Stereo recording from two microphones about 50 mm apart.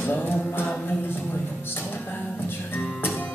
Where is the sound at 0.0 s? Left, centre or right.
Left.